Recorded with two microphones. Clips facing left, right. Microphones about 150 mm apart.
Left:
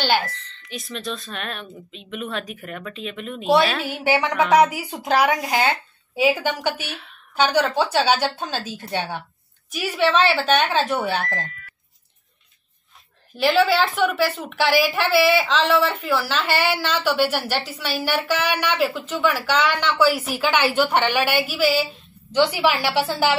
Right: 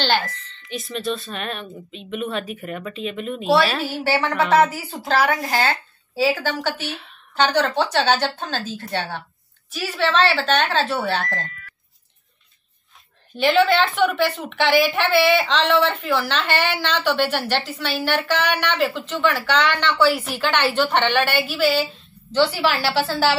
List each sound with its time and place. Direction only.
0.0 s speech: 10° left (ahead or behind)
0.6 s speech: centre (ahead or behind)
3.8 s a woman's voice: 15° left (ahead or behind)
6.9 s a woman's voice: centre (ahead or behind)
7.3 s a woman's voice: 10° left (ahead or behind)
13.4 s a woman's voice: 5° left (ahead or behind)